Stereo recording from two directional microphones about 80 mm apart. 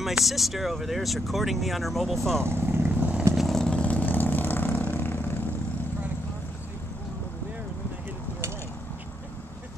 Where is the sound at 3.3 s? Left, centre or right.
Centre; by 5.4 s left.